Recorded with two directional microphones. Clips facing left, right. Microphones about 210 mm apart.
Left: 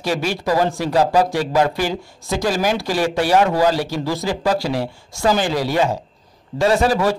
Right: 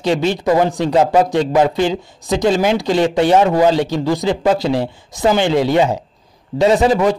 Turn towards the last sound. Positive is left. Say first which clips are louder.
# right 4 dB
turn(degrees=-20)  # may be behind; listen again after turning